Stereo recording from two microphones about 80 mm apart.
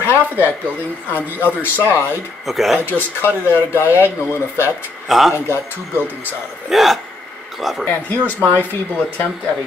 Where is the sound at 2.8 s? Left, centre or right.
Left.